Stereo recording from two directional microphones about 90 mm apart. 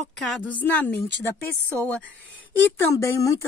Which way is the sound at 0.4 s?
15° left (ahead or behind).